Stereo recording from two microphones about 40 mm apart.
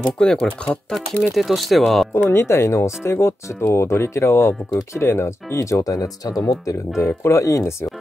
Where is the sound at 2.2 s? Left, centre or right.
Left.